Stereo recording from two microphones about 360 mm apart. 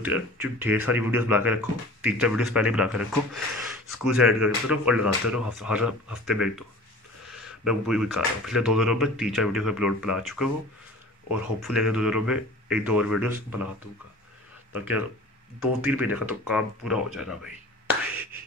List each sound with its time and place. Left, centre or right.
0.0 s speech: centre
15.8 s speech: centre